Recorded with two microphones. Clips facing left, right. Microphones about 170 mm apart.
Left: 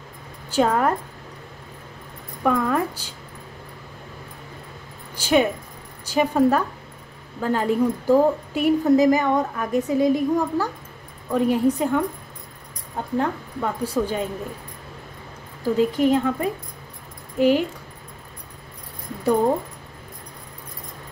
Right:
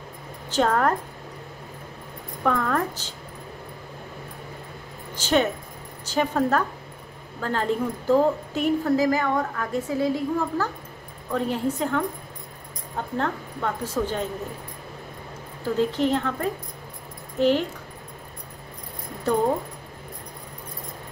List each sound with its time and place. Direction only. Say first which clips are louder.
0.5 s a woman's voice: left 2 dB; 10° left (ahead or behind)
2.4 s a woman's voice: left 3 dB; 10° left (ahead or behind)
5.1 s a woman's voice: left 3 dB; 10° left (ahead or behind)
13.2 s a woman's voice: left 2 dB; 10° left (ahead or behind)
15.6 s a woman's voice: left 4 dB; 10° left (ahead or behind)